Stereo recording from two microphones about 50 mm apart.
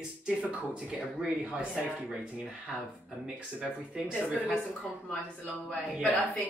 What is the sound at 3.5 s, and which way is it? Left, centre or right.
Speech, right.